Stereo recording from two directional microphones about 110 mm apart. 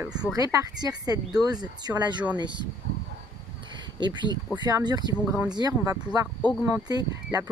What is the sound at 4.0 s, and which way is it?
Speech, 45° right (ahead or behind).